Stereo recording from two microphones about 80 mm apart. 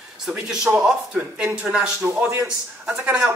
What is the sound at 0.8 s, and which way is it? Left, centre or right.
A man's voice, centre.